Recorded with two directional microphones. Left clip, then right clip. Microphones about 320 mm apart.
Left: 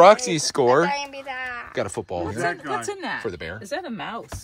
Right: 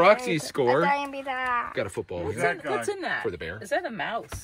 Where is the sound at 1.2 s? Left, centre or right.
Centre.